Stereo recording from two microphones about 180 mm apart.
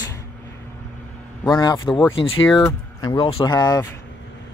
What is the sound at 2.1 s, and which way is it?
Speech, 90° left.